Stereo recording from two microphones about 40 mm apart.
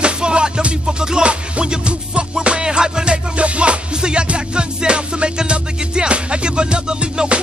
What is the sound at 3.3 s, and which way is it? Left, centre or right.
Music, right.